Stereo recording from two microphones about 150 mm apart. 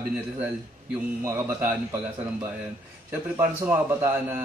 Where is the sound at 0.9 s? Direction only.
15° right (ahead or behind).